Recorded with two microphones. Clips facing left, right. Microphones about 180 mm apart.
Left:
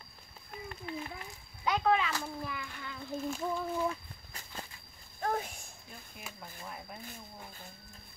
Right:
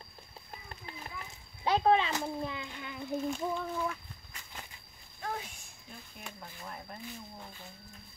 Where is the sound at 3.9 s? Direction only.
35° left (ahead or behind).